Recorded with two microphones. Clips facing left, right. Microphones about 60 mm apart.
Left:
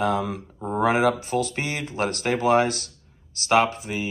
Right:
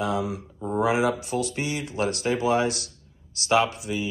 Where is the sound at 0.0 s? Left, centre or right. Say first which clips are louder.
Left 3 dB; left.